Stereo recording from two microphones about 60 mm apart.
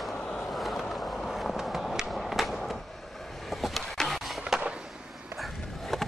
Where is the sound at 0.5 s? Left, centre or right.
Centre.